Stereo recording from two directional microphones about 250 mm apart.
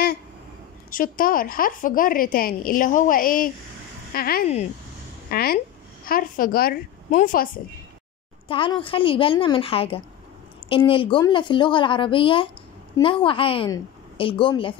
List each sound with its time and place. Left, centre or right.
0.8 s a woman's voice: left
8.5 s a woman's voice: left